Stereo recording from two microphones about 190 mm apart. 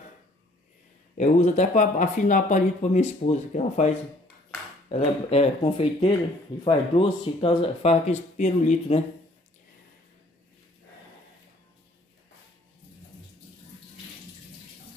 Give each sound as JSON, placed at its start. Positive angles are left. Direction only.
{"t": 1.1, "sound": "speech", "side_deg": 40}